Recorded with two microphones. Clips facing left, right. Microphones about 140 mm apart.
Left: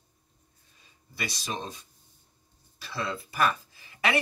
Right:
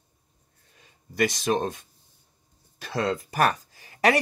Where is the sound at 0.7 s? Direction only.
50° right (ahead or behind).